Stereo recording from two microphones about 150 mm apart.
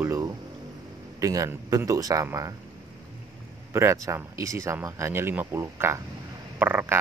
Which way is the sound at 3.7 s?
20° right (ahead or behind).